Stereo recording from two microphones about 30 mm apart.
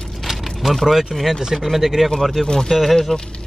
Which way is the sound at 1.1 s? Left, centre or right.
Centre.